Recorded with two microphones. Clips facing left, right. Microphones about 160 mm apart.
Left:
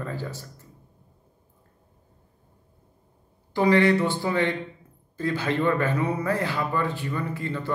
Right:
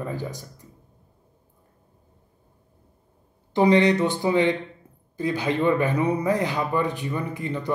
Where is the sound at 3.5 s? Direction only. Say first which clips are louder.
Right 2 dB; 20° right (ahead or behind).